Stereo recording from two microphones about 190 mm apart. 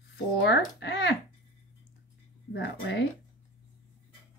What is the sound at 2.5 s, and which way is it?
Speech, 70° left (ahead or behind).